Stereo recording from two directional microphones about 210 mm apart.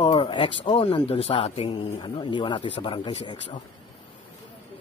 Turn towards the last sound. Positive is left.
turn(degrees=20)  # may be behind; listen again after turning